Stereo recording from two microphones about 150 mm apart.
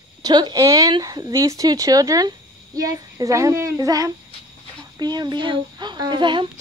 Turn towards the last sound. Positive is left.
turn(degrees=-30)  # may be behind; listen again after turning